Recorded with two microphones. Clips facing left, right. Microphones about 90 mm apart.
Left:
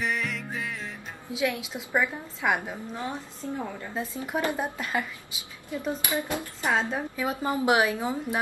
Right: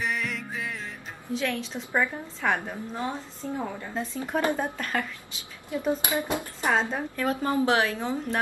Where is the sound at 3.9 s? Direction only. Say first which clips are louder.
Right 1 dB; 10° left (ahead or behind).